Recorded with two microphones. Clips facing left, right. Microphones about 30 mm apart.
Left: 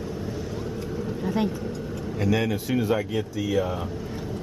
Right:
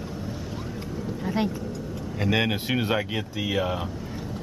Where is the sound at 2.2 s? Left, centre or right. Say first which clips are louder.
Even; right.